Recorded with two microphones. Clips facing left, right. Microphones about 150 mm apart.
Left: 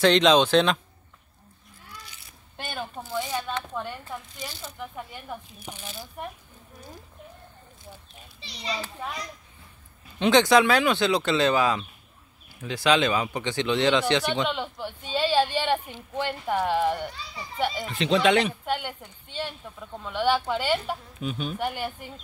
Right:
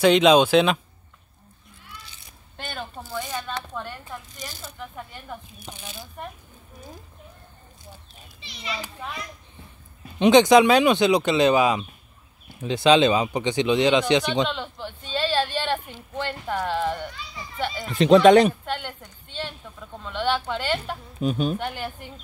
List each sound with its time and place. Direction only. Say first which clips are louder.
0.0 s speech: right 3 dB; 10° right (ahead or behind)
2.5 s a sound: even; 10° left (ahead or behind)
3.1 s speech: left 2 dB; 5° left (ahead or behind)
4.1 s a sound: left 1 dB; 5° left (ahead or behind)
4.7 s speech: even; 10° left (ahead or behind)
8.4 s a child's voice: left 1 dB; 35° left (ahead or behind)
10.1 s speech: right 4 dB; 15° right (ahead or behind)
14.5 s speech: left 1 dB; 10° left (ahead or behind)
17.6 s a sound: left 1 dB; 10° left (ahead or behind)
17.9 s speech: right 9 dB; 45° right (ahead or behind)
18.7 s speech: left 1 dB; 10° left (ahead or behind)
21.2 s speech: right 11 dB; 40° right (ahead or behind)
21.5 s speech: left 1 dB; 10° left (ahead or behind)